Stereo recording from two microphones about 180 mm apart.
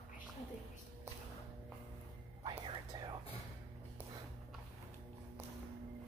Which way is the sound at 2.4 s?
25° right (ahead or behind).